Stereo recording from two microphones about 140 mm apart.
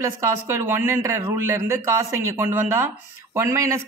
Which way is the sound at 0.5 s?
20° right (ahead or behind).